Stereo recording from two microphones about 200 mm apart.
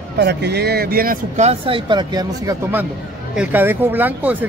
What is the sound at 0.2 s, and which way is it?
Speech, 55° right (ahead or behind).